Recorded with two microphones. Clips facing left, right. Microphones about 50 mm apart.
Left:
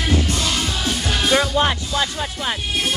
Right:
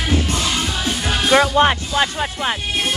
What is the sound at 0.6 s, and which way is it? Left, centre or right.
Music, right.